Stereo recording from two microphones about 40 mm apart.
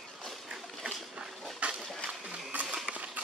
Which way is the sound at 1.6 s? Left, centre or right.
Right.